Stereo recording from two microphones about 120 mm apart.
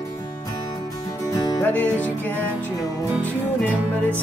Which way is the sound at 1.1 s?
30° left (ahead or behind).